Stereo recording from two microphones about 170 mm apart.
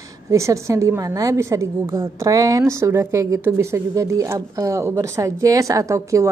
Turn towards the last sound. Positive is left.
turn(degrees=-20)  # may be behind; listen again after turning